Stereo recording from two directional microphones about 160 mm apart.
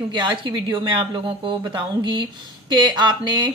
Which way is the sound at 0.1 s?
30° right (ahead or behind).